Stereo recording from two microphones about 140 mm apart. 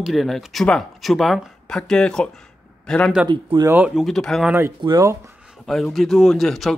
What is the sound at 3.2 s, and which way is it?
Speech, 35° right (ahead or behind).